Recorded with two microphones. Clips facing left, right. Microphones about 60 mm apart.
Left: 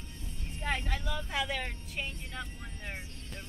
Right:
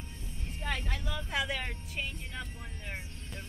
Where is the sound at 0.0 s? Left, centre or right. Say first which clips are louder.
Right 1 dB; right.